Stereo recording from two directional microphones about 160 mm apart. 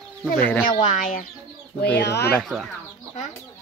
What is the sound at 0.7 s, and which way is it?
Speech, 50° left (ahead or behind).